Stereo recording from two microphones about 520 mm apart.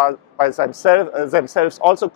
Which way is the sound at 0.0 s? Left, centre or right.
Left.